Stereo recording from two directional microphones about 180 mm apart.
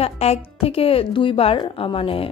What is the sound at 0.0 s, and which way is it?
Speech, 35° left (ahead or behind).